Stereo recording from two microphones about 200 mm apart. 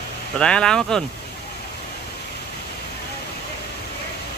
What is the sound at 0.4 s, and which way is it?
Speech, 5° left (ahead or behind).